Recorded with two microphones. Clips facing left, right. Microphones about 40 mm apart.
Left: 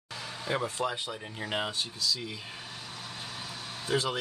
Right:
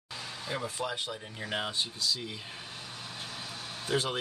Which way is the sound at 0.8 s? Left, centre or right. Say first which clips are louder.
Left 2 dB; centre.